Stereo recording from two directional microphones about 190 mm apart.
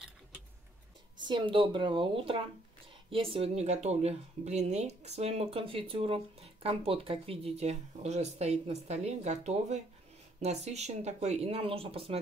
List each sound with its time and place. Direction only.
1.1 s a woman's voice: 25° right (ahead or behind)